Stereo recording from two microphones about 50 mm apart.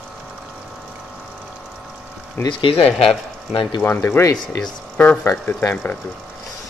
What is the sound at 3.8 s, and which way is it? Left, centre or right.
Speech, left.